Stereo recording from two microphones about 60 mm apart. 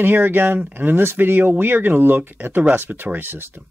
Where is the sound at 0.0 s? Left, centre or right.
Right.